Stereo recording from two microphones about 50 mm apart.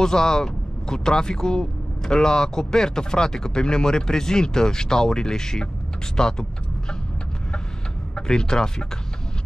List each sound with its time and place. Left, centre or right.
0.0 s speech: centre
8.3 s speech: centre